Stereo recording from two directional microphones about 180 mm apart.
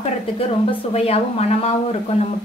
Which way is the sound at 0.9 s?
35° left (ahead or behind).